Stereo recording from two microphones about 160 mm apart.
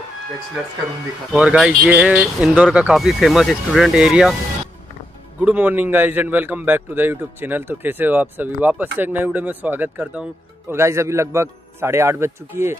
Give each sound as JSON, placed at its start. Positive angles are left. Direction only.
{"t": 1.3, "sound": "speech", "side_deg": -5}
{"t": 5.4, "sound": "a man's voice", "side_deg": -10}